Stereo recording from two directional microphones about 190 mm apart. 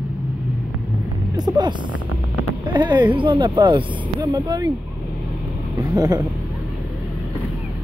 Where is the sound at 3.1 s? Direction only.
25° right (ahead or behind).